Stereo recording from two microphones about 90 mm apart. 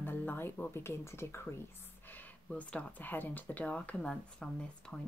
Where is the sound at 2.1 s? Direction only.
20° left (ahead or behind).